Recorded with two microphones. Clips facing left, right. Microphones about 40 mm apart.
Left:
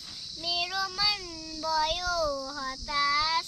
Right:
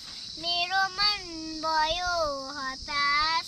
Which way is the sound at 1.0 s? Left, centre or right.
Centre.